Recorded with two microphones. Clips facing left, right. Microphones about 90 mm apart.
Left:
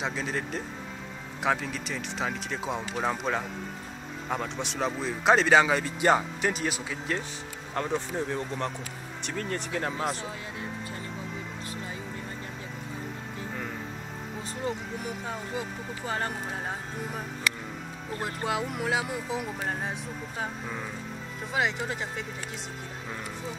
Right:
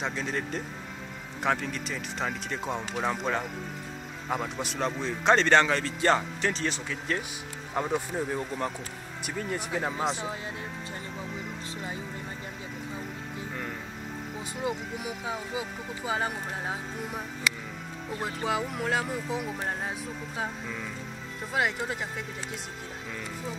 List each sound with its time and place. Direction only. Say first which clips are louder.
0.0 s a man's voice: even; centre (ahead or behind)
7.7 s speech: right 1 dB; 10° right (ahead or behind)
10.0 s speech: right 2 dB; 20° right (ahead or behind)
14.6 s a man's voice: right 1 dB; 10° right (ahead or behind)
17.4 s music: even; 15° right (ahead or behind)
18.2 s a man's voice: even; centre (ahead or behind)
21.5 s a man's voice: even; centre (ahead or behind)